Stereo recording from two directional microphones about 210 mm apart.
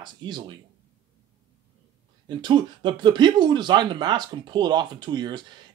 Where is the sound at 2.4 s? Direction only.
20° right (ahead or behind).